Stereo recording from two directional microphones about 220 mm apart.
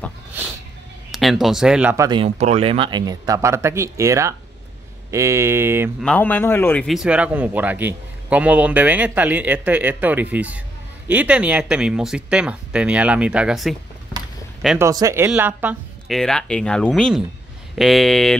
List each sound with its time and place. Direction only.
1.1 s speech: centre (ahead or behind)
2.0 s a man's voice: 25° right (ahead or behind)
6.0 s a man's voice: 10° left (ahead or behind)
14.8 s speech: 15° right (ahead or behind); by 18.3 s centre (ahead or behind)